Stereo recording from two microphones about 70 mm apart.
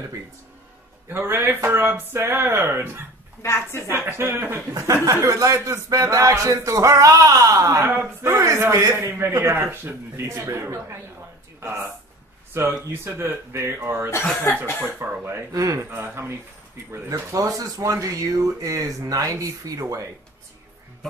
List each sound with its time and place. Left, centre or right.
1.0 s speech: right
3.4 s a woman's voice: left
3.9 s speech: right
4.7 s speech: right
7.7 s speech: right
8.4 s speech: right
15.5 s speech: right
15.9 s speech: right
17.4 s speech: right
17.9 s speech: right